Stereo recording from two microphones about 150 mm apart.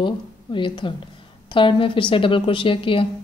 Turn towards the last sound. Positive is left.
turn(degrees=35)  # may be behind; listen again after turning